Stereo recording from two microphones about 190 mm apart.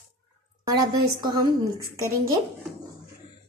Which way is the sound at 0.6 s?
20° right (ahead or behind).